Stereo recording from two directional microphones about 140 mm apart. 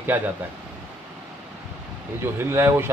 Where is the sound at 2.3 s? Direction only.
15° right (ahead or behind).